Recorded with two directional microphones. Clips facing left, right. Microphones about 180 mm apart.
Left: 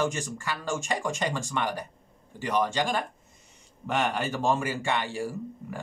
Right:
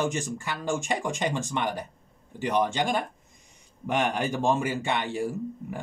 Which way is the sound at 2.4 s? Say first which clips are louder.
Right 1 dB; 15° right (ahead or behind).